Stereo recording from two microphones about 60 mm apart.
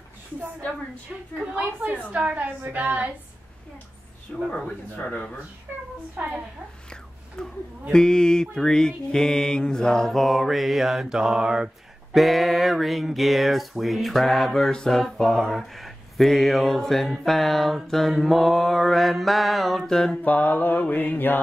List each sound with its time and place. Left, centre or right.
1.4 s a woman's voice: centre
4.5 s mantra: centre
5.7 s a woman's voice: right
7.4 s music: centre
12.1 s a sound: centre
19.8 s music: centre
20.2 s mantra: left